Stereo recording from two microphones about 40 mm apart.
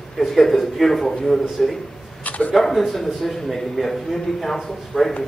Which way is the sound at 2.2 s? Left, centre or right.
Left.